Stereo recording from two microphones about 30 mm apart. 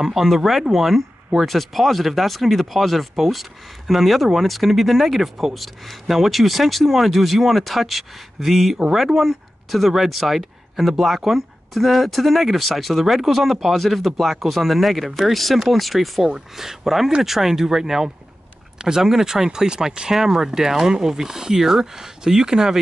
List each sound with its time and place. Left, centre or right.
0.0 s speech: centre
1.4 s speech: centre
16.3 s speech: centre